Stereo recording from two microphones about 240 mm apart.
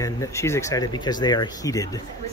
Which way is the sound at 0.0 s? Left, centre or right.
Centre.